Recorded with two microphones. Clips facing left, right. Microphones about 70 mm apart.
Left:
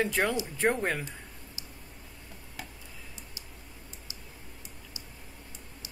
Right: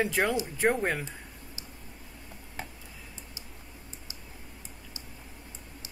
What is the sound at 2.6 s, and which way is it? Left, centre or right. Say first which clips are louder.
Tick-tock: right 3 dB; right.